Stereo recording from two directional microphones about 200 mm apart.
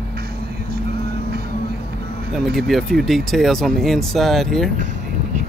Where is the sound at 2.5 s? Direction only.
Centre (ahead or behind).